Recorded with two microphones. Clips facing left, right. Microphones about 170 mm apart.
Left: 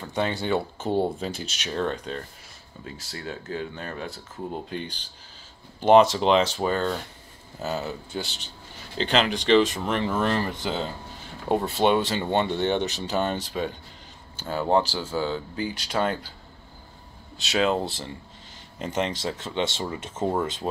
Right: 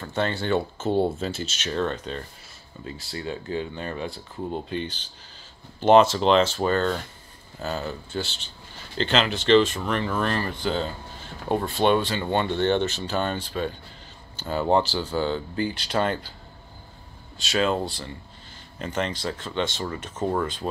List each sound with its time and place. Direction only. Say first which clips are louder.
0.0 s speech: even; 15° left (ahead or behind)
14.3 s speech: right 1 dB; 5° left (ahead or behind)
17.4 s speech: even; 20° left (ahead or behind)